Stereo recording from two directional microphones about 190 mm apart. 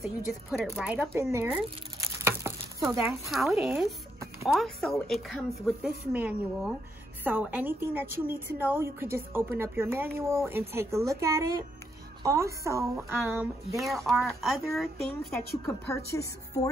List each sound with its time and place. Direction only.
0.0 s speech: centre (ahead or behind)
3.3 s speech: centre (ahead or behind)
4.5 s a woman's voice: centre (ahead or behind)
15.6 s speech: 15° left (ahead or behind)